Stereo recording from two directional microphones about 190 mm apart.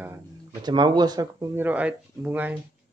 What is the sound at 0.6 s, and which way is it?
Speech, 25° right (ahead or behind).